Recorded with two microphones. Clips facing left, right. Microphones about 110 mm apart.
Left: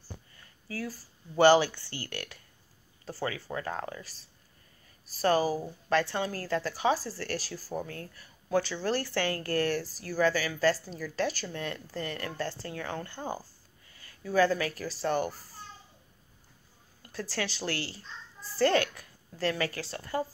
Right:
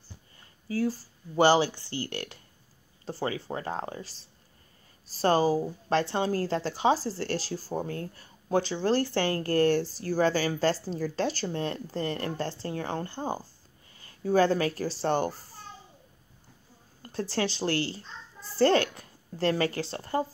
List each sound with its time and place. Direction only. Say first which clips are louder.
0.4 s speech: right 9 dB; 30° right (ahead or behind)
17.1 s a woman's voice: right 5 dB; 25° right (ahead or behind)